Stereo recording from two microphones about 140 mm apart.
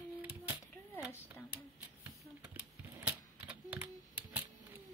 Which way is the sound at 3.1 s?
10° right (ahead or behind).